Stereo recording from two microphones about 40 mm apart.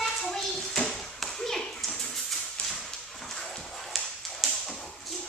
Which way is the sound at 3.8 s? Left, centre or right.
Centre.